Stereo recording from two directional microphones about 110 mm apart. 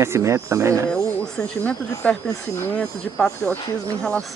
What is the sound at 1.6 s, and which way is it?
Speech, 10° left (ahead or behind).